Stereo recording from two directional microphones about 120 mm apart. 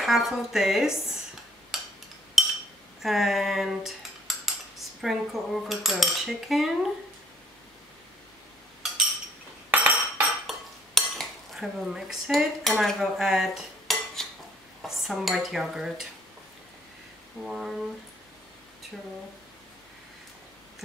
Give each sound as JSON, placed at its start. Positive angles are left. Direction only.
{"t": 0.0, "sound": "cutlery", "side_deg": 0}
{"t": 1.7, "sound": "a sound", "side_deg": 0}
{"t": 2.4, "sound": "chink", "side_deg": -5}
{"t": 3.0, "sound": "cutlery", "side_deg": 0}
{"t": 8.8, "sound": "a sound", "side_deg": 0}
{"t": 9.7, "sound": "chink", "side_deg": -15}
{"t": 11.0, "sound": "dishes", "side_deg": 0}
{"t": 12.8, "sound": "cutlery", "side_deg": 0}
{"t": 14.8, "sound": "stir", "side_deg": 0}
{"t": 17.5, "sound": "cutlery", "side_deg": 0}